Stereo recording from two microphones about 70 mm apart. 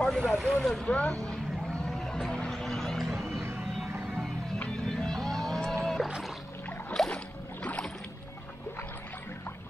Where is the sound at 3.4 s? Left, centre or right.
Right.